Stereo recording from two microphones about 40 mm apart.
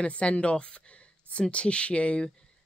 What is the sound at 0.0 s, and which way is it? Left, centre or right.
A woman's voice, left.